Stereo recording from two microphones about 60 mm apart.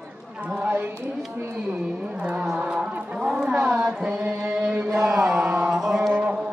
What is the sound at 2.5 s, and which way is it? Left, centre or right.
Music, centre.